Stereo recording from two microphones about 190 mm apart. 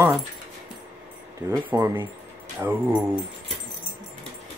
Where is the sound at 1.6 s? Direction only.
15° right (ahead or behind).